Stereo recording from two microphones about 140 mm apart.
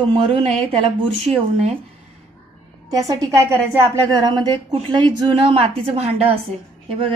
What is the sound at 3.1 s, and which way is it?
A woman's voice, 20° right (ahead or behind).